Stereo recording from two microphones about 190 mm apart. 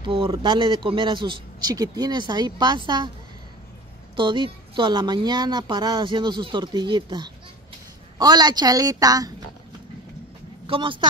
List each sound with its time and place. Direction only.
0.0 s a woman's voice: 30° right (ahead or behind)
4.2 s a woman's voice: 25° right (ahead or behind)
10.7 s a woman's voice: 25° right (ahead or behind)